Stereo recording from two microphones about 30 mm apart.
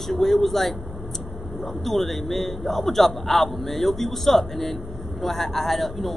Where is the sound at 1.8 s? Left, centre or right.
Centre.